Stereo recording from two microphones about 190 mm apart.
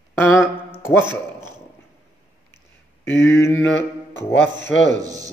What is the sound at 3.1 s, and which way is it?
Mantra, 15° left (ahead or behind).